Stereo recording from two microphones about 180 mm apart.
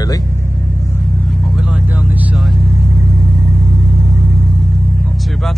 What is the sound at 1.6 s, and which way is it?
Vehicle, 5° right (ahead or behind).